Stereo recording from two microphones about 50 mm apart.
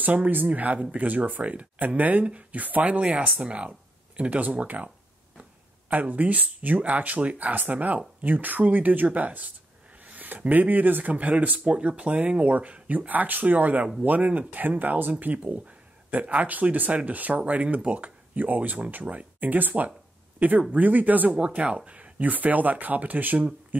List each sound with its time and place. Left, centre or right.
0.0 s speech: right
21.3 s speech: centre